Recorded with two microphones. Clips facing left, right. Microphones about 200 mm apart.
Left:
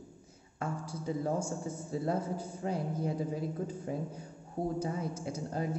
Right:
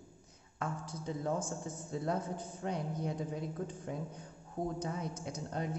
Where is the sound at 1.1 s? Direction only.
5° left (ahead or behind).